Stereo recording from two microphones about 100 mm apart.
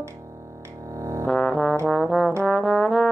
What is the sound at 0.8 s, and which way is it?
Music, 30° right (ahead or behind).